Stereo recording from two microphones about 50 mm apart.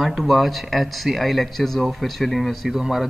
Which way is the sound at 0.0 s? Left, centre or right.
Centre.